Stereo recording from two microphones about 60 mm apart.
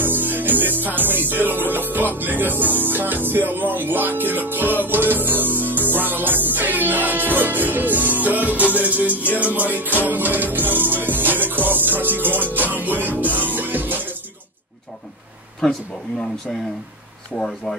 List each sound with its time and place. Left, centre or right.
0.0 s music: right
9.1 s music: left
9.8 s music: right
15.6 s speech: centre
17.3 s speech: left